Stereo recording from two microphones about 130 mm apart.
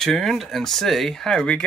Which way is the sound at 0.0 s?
5° left (ahead or behind).